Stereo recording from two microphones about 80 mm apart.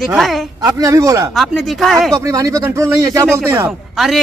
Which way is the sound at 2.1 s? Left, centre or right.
Right.